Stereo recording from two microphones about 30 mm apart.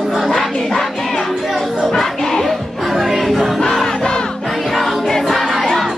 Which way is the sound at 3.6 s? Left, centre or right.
Centre.